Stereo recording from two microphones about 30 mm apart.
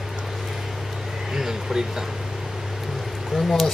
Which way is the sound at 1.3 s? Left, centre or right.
Centre.